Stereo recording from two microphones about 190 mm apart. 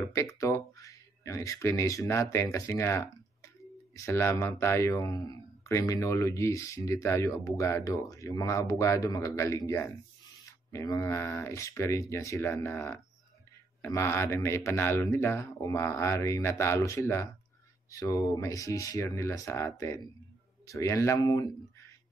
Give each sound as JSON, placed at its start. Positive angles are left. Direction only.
{"t": 0.1, "sound": "speech", "side_deg": 15}